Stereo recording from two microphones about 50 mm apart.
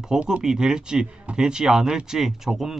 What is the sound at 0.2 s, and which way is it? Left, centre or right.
A man's voice, centre.